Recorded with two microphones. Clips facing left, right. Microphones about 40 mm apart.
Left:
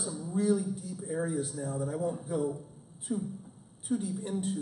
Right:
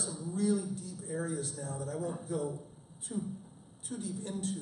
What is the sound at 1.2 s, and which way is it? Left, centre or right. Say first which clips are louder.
Speech: left 5 dB; centre.